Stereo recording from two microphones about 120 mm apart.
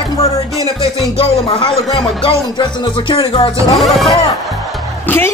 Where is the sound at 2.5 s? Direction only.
40° left (ahead or behind).